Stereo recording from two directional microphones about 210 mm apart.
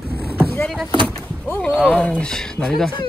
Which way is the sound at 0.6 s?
Centre (ahead or behind).